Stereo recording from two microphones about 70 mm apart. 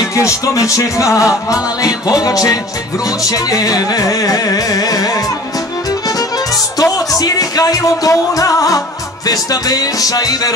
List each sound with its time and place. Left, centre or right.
0.1 s music: left
6.8 s music: left